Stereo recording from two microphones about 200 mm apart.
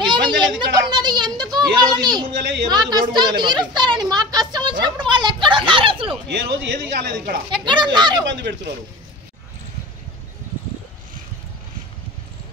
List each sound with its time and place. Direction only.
0.4 s a sound: 20° right (ahead or behind)
6.2 s speech: 55° right (ahead or behind)
7.5 s speech: 25° right (ahead or behind)
8.4 s speech: 60° right (ahead or behind)